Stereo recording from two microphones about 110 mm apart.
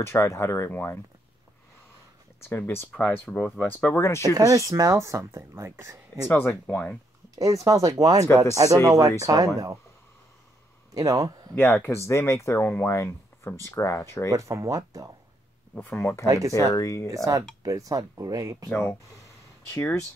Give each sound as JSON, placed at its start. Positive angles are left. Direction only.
{"t": 0.0, "sound": "speech", "side_deg": 25}
{"t": 2.4, "sound": "speech", "side_deg": 20}
{"t": 4.2, "sound": "speech", "side_deg": -30}
{"t": 6.2, "sound": "speech", "side_deg": 20}
{"t": 7.3, "sound": "speech", "side_deg": -30}
{"t": 11.0, "sound": "speech", "side_deg": -30}
{"t": 11.5, "sound": "speech", "side_deg": 15}
{"t": 14.3, "sound": "speech", "side_deg": -30}
{"t": 15.7, "sound": "speech", "side_deg": 15}
{"t": 16.3, "sound": "speech", "side_deg": -30}
{"t": 16.5, "sound": "speech", "side_deg": 30}
{"t": 17.1, "sound": "speech", "side_deg": -30}
{"t": 19.7, "sound": "speech", "side_deg": 25}